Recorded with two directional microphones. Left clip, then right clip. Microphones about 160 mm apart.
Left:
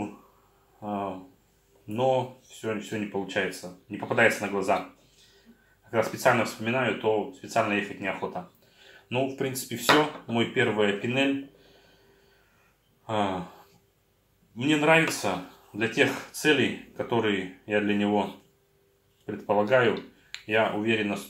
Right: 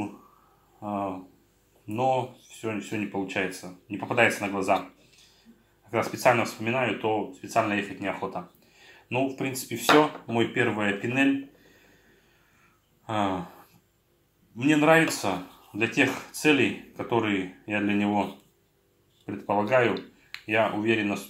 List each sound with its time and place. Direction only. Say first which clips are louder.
0.7 s a sound: right 1 dB; 25° right (ahead or behind)
2.6 s speech: even; 20° right (ahead or behind)
5.9 s speech: right 1 dB; 25° right (ahead or behind)
13.0 s a sound: even; 20° right (ahead or behind)
14.6 s speech: right 1 dB; 25° right (ahead or behind)
19.4 s speech: left 1 dB; 20° right (ahead or behind)